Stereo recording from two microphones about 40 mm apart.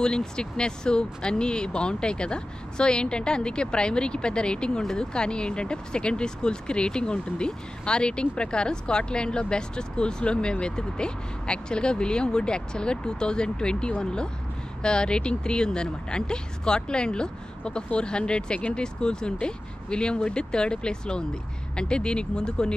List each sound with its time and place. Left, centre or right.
0.0 s speech: centre